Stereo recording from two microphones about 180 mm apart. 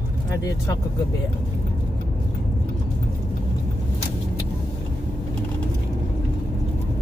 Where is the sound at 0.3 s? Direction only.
20° left (ahead or behind).